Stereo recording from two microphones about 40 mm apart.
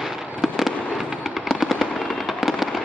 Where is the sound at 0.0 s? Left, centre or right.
Centre.